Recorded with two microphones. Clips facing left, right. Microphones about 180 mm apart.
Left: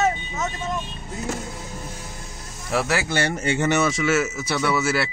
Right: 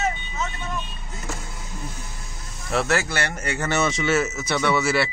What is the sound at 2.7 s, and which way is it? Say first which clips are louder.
Speech: even; 10° left (ahead or behind).